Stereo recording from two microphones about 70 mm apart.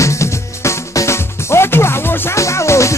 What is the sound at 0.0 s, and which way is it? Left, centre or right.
Music, left.